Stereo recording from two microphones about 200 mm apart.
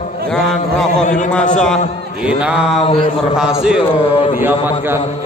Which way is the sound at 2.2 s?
5° right (ahead or behind).